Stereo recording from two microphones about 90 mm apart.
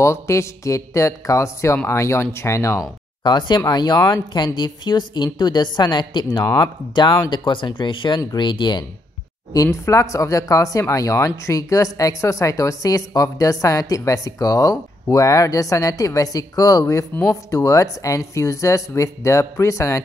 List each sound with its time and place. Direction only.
0.0 s speech: 30° left (ahead or behind)
3.3 s a woman's voice: 55° left (ahead or behind)
9.5 s speech: 40° left (ahead or behind)